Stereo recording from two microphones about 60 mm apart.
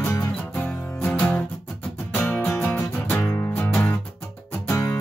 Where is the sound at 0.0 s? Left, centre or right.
Left.